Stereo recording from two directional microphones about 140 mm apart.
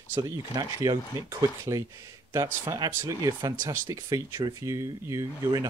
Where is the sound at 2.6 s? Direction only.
25° right (ahead or behind).